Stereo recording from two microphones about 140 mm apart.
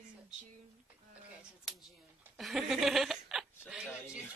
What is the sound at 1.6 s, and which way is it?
Speech, centre (ahead or behind).